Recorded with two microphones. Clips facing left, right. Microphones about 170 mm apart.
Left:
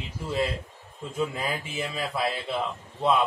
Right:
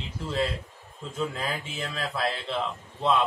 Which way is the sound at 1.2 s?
10° left (ahead or behind).